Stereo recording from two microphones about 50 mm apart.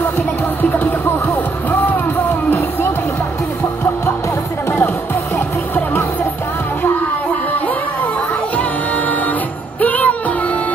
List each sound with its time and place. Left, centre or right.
0.6 s music: left
9.8 s music: left